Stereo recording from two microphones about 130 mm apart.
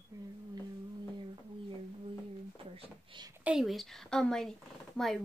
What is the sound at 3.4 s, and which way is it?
Speech, 5° right (ahead or behind).